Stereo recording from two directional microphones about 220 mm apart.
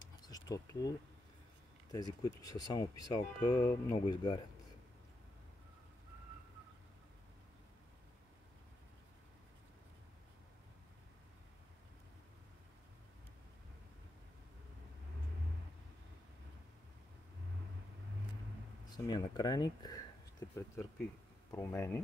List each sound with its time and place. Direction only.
0.0 s a sound: 15° left (ahead or behind)
1.9 s speech: 15° left (ahead or behind)
19.0 s speech: 20° left (ahead or behind)